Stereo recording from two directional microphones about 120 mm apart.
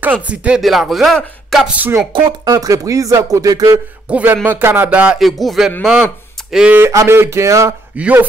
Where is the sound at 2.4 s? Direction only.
30° right (ahead or behind).